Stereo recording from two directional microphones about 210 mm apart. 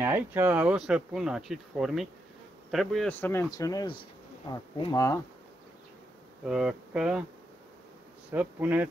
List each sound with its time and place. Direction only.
0.0 s speech: 10° right (ahead or behind); by 5.2 s 15° left (ahead or behind)
6.4 s speech: 5° right (ahead or behind)
8.3 s speech: 10° right (ahead or behind)